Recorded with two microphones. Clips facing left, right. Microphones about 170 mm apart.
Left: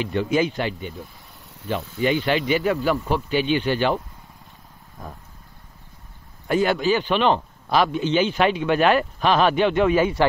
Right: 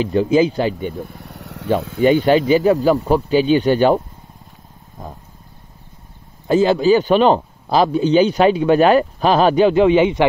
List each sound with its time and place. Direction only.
0.0 s speech: 35° right (ahead or behind)
0.7 s vehicle: 55° right (ahead or behind); by 1.7 s 75° right (ahead or behind)
1.8 s speech: 60° right (ahead or behind); by 4.0 s 40° right (ahead or behind)
5.0 s vehicle: 20° right (ahead or behind)
6.4 s speech: 25° right (ahead or behind)